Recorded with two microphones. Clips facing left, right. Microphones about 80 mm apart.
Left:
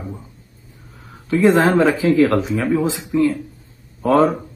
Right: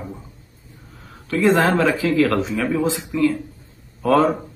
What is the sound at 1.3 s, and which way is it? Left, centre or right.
A man's voice, left.